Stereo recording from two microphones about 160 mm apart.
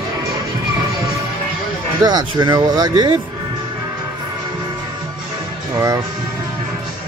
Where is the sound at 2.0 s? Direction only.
25° right (ahead or behind).